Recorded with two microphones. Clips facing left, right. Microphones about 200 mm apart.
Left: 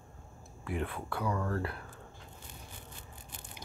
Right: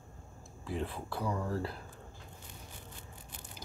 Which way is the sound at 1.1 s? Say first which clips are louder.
Left 2 dB; 30° right (ahead or behind).